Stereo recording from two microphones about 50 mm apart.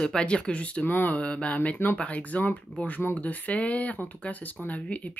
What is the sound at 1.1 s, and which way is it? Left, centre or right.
Speech, left.